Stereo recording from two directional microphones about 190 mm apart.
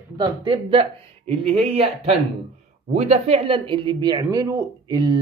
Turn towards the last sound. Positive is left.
turn(degrees=-20)  # may be behind; listen again after turning